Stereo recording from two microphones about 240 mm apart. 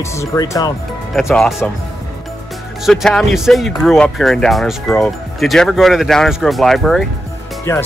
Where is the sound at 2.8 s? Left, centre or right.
Centre.